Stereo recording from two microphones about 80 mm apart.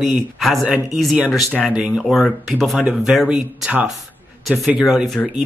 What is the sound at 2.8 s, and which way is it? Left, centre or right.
Speech, centre.